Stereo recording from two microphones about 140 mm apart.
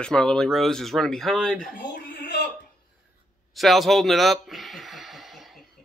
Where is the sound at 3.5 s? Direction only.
Centre (ahead or behind).